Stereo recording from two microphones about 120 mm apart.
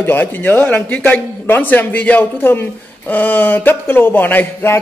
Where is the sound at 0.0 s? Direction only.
15° left (ahead or behind).